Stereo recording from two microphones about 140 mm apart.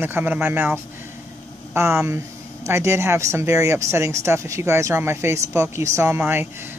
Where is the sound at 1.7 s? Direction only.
20° right (ahead or behind).